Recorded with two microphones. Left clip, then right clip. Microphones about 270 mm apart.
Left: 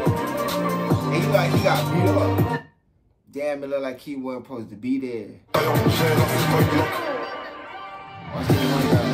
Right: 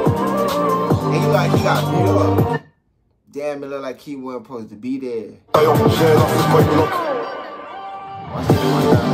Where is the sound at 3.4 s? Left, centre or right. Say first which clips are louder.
Right 1 dB; centre.